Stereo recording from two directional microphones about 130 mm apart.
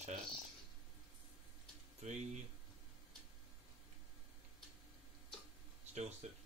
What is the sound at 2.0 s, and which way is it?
Speech, 70° right (ahead or behind).